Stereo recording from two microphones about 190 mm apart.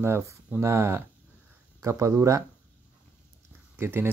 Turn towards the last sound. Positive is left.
turn(degrees=-10)  # may be behind; listen again after turning